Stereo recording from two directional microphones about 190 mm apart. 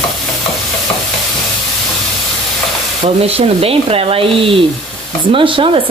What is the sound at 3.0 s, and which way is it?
Speech, 30° right (ahead or behind).